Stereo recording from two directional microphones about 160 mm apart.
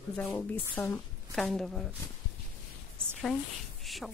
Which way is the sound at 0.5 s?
15° left (ahead or behind).